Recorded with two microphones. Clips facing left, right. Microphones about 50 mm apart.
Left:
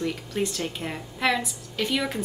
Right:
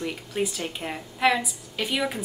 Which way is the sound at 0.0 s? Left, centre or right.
Centre.